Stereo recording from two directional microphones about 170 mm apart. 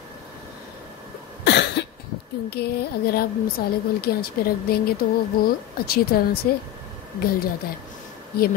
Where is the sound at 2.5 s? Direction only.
70° left (ahead or behind).